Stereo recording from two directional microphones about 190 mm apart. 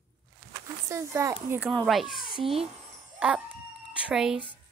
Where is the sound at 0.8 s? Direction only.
15° right (ahead or behind).